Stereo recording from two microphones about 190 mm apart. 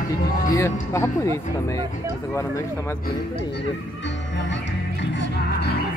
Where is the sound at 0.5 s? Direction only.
15° left (ahead or behind).